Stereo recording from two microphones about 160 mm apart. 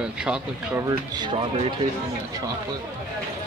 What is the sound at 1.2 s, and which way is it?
Speech, 30° right (ahead or behind).